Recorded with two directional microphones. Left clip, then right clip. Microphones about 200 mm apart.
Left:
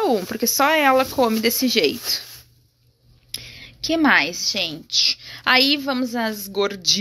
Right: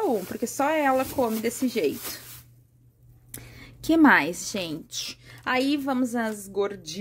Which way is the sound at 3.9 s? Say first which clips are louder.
Left 2 dB; 25° right (ahead or behind).